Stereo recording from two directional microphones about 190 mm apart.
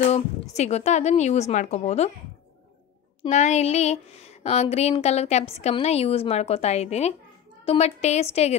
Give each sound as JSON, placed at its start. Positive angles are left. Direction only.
{"t": 0.1, "sound": "speech", "side_deg": 35}
{"t": 3.3, "sound": "speech", "side_deg": 35}